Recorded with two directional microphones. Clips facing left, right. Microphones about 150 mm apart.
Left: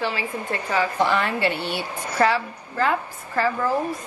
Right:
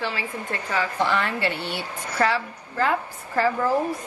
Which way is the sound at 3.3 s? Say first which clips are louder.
Right 1 dB; 40° right (ahead or behind).